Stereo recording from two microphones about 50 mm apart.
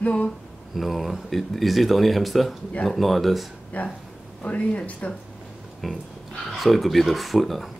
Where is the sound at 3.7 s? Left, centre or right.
Left.